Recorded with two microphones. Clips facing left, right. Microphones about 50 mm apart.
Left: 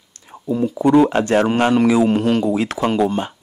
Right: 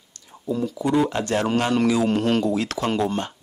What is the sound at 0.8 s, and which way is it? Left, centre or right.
Speech, left.